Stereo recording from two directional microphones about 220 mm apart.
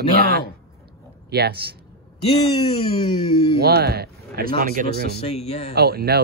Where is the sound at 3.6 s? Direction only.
45° right (ahead or behind).